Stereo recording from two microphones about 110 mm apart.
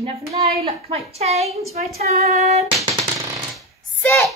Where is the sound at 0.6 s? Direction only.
65° right (ahead or behind).